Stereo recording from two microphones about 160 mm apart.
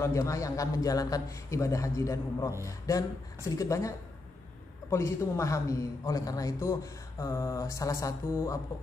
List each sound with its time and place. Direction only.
0.0 s a man's voice: 20° left (ahead or behind)